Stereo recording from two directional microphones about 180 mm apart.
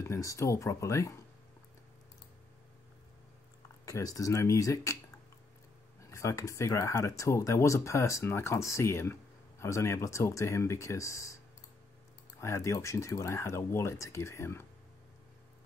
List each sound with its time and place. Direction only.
0.0 s speech: 15° left (ahead or behind)
3.8 s speech: 20° left (ahead or behind)
5.9 s speech: 15° left (ahead or behind)
12.4 s speech: 15° left (ahead or behind)